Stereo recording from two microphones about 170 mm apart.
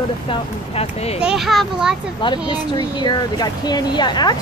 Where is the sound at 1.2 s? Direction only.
5° right (ahead or behind).